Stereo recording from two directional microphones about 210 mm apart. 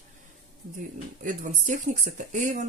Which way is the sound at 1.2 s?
40° right (ahead or behind).